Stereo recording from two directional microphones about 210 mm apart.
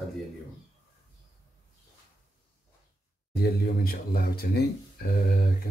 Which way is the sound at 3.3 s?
50° left (ahead or behind).